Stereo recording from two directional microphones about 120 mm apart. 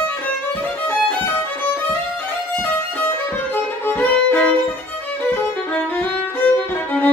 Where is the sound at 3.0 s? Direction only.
15° left (ahead or behind).